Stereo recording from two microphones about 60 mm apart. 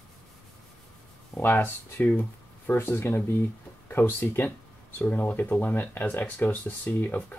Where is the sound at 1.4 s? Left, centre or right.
Left.